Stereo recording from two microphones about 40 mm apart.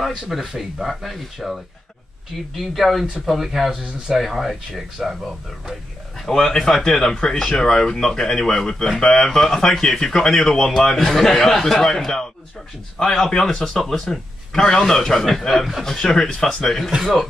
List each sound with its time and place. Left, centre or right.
0.0 s speech: centre
0.8 s speech: centre
6.4 s speech: centre